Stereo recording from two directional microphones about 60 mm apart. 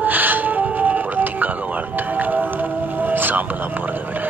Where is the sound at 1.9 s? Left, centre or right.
Right.